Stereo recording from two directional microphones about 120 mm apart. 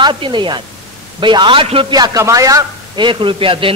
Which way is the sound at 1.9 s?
30° right (ahead or behind).